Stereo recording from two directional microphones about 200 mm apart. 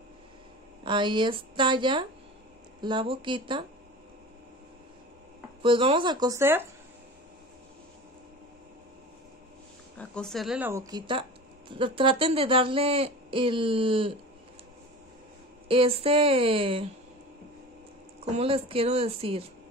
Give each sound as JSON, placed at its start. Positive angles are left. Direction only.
{"t": 0.8, "sound": "a woman's voice", "side_deg": -25}
{"t": 5.6, "sound": "a woman's voice", "side_deg": -25}
{"t": 9.9, "sound": "speech", "side_deg": 5}
{"t": 10.7, "sound": "a woman's voice", "side_deg": -20}
{"t": 15.7, "sound": "a woman's voice", "side_deg": -30}
{"t": 18.2, "sound": "a woman's voice", "side_deg": -30}